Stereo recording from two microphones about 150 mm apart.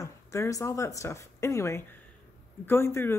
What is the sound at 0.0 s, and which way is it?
A woman's voice, 20° left (ahead or behind).